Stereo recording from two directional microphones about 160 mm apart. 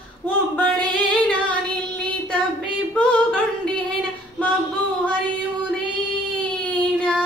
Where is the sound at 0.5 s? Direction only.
5° left (ahead or behind).